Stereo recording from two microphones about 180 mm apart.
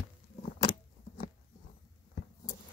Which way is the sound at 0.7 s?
50° left (ahead or behind).